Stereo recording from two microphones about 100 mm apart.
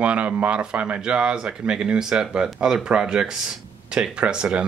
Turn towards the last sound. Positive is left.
turn(degrees=-10)  # may be behind; listen again after turning